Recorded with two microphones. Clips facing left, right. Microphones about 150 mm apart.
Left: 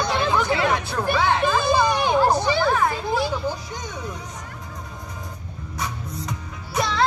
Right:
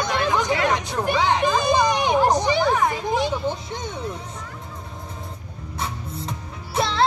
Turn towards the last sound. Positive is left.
turn(degrees=-30)  # may be behind; listen again after turning